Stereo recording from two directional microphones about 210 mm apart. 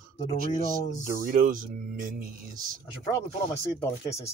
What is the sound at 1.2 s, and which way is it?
Speech, 40° right (ahead or behind).